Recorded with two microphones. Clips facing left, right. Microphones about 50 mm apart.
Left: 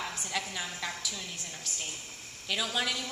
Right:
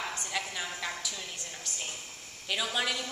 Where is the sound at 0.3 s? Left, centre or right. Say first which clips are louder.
Even; centre.